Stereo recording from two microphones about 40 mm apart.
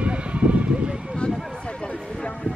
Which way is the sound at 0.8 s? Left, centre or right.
Centre.